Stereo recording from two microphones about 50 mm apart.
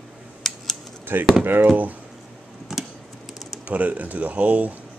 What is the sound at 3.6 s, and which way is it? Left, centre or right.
Speech, right.